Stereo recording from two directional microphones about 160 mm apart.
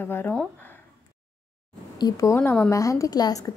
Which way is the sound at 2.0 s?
25° left (ahead or behind).